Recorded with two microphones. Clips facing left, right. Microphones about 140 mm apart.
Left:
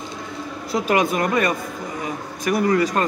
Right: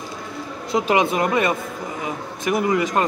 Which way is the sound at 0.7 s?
20° right (ahead or behind).